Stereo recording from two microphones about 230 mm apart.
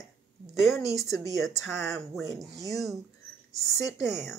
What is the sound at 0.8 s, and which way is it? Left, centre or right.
Speech, right.